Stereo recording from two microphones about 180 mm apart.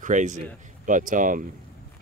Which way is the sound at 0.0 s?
45° right (ahead or behind).